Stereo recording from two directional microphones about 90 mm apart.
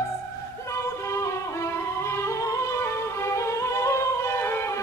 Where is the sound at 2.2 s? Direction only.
35° left (ahead or behind).